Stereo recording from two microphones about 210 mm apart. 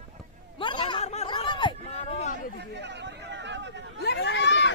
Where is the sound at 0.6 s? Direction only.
25° left (ahead or behind).